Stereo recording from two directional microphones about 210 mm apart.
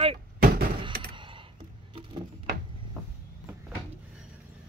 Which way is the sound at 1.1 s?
25° right (ahead or behind).